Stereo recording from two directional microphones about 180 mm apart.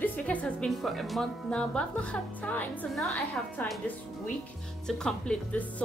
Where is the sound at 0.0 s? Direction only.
10° left (ahead or behind).